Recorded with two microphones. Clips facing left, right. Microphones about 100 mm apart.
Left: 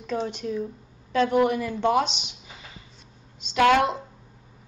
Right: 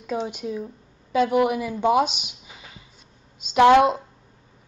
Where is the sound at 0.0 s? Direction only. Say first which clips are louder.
Right 1 dB; 10° right (ahead or behind).